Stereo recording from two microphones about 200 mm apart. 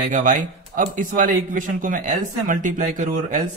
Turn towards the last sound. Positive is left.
turn(degrees=-40)  # may be behind; listen again after turning